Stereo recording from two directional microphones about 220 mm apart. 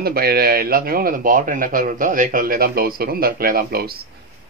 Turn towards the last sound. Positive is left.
turn(degrees=-45)  # may be behind; listen again after turning